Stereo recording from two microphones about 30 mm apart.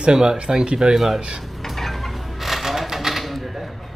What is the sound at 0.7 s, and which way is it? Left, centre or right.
Speech, centre.